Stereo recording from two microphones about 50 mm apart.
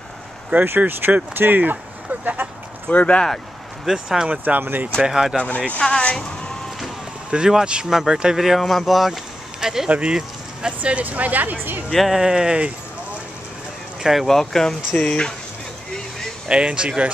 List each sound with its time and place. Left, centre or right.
0.6 s speech: right
2.9 s speech: left
3.8 s speech: centre
4.3 s speech: right
5.0 s speech: centre
5.8 s speech: centre
7.2 s speech: centre
9.8 s speech: right
11.9 s speech: centre
12.2 s speech: centre
14.2 s speech: centre
16.4 s speech: right